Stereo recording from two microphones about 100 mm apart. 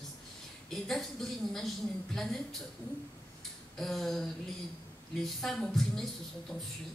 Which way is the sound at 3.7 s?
5° left (ahead or behind).